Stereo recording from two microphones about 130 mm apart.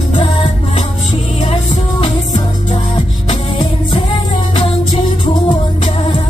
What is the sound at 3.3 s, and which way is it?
Music, 40° left (ahead or behind).